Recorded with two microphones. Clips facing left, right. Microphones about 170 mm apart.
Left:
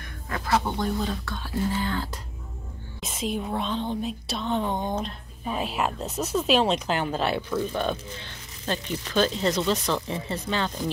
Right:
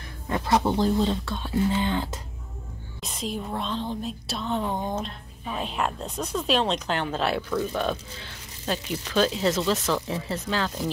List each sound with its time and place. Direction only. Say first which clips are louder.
0.3 s speech: right 3 dB; 20° right (ahead or behind)
3.0 s speech: left 2 dB; centre (ahead or behind)
5.4 s speech: left 1 dB; 10° left (ahead or behind)